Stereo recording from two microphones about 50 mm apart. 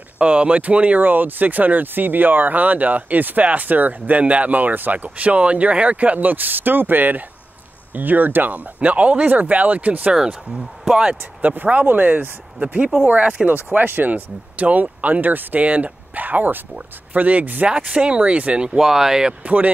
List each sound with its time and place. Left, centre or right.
0.2 s speech: right
10.1 s speech: centre
11.4 s speech: right
12.5 s speech: right
17.6 s speech: right
18.8 s speech: centre
19.4 s speech: right